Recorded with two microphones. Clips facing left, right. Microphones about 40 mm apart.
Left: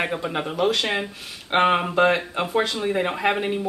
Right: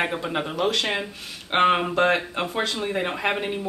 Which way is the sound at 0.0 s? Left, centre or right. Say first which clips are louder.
Even; centre.